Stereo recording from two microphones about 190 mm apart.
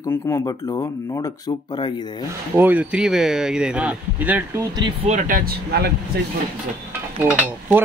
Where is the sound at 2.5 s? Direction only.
10° right (ahead or behind).